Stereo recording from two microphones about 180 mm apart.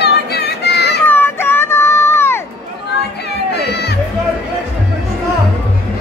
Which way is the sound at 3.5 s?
65° left (ahead or behind).